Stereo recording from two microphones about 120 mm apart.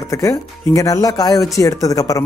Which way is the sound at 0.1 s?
25° left (ahead or behind).